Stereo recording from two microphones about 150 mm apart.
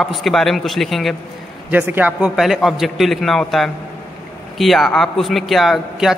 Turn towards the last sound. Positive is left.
turn(degrees=0)  # may be behind; listen again after turning